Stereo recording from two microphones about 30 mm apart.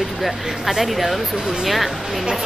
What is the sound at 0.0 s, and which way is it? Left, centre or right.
Speech, centre.